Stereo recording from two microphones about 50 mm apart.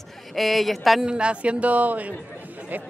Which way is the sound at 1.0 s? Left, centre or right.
Right.